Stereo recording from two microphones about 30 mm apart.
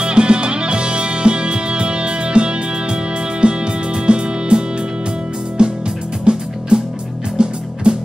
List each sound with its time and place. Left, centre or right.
0.0 s music: right